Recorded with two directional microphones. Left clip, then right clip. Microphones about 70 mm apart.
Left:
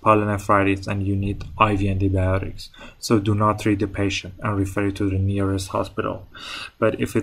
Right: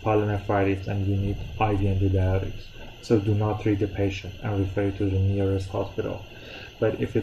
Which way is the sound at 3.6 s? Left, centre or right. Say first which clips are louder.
Left 3 dB; left.